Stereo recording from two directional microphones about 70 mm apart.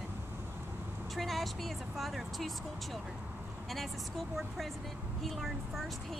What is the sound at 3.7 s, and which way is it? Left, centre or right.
Speech, centre.